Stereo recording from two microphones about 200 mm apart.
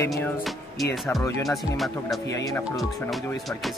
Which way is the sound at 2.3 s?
15° left (ahead or behind).